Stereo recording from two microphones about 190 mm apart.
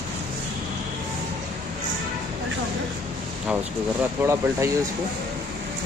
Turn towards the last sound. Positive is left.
turn(degrees=-15)  # may be behind; listen again after turning